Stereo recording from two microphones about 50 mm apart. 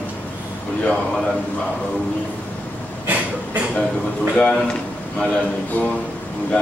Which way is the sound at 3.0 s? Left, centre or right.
Right.